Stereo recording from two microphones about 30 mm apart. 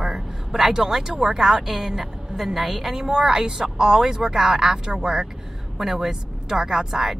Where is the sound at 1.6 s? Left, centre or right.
Centre.